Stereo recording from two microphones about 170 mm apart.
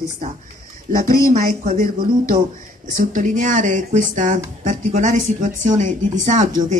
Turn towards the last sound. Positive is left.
turn(degrees=-50)  # may be behind; listen again after turning